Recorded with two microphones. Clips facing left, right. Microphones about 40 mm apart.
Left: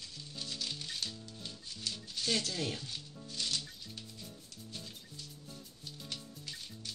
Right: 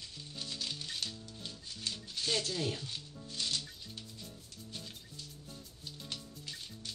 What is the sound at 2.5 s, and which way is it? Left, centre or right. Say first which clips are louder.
Speech: right 1 dB; left.